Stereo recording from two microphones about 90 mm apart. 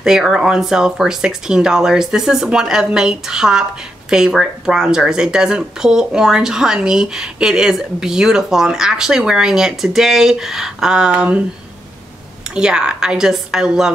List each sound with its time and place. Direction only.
0.0 s speech: 5° right (ahead or behind)
12.5 s speech: 10° right (ahead or behind)